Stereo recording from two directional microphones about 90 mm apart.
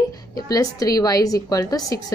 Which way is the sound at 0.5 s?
40° left (ahead or behind).